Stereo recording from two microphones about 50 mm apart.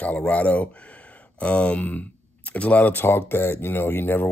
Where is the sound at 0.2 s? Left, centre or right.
Left.